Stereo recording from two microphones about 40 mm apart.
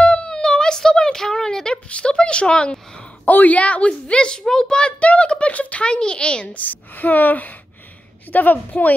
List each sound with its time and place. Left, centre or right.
0.0 s a sound: left
0.3 s a sound: centre
1.9 s a woman's voice: left
3.3 s a woman's voice: left; by 4.9 s centre
5.0 s speech: left
6.5 s a woman's voice: left